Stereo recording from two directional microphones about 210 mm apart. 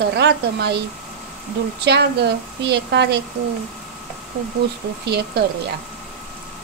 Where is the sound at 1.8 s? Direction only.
50° right (ahead or behind).